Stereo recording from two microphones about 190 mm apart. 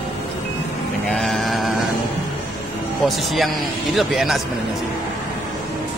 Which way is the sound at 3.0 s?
Centre (ahead or behind).